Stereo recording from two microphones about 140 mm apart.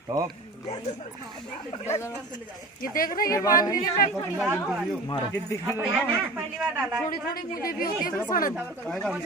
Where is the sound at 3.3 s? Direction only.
25° left (ahead or behind).